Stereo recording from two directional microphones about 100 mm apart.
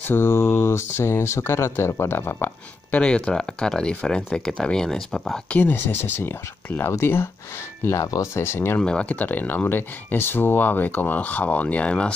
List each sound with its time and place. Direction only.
0.1 s speech: 25° left (ahead or behind)
2.9 s speech: 10° left (ahead or behind)
5.5 s speech: 20° left (ahead or behind)
8.8 s speech: 10° left (ahead or behind)